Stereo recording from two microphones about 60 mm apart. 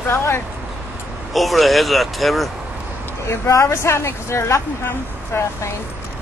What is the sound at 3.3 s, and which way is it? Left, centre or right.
Speech, left.